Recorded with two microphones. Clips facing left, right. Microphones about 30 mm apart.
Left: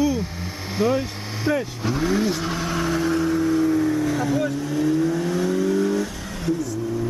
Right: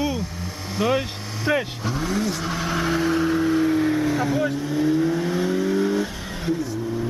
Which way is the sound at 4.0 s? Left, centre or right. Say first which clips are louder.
Even; centre.